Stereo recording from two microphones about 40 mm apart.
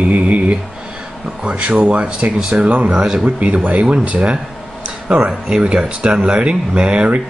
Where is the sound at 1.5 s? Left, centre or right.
Right.